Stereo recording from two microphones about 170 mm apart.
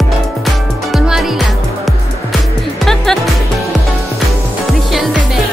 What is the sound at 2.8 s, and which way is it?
Music, 5° left (ahead or behind).